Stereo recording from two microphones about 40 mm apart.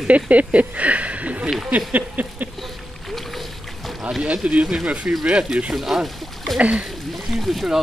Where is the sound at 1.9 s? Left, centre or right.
Right.